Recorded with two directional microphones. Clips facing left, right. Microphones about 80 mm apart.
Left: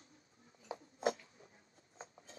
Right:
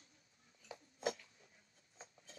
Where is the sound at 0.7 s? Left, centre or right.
Left.